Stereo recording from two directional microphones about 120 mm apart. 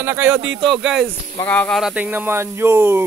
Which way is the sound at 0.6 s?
Centre (ahead or behind).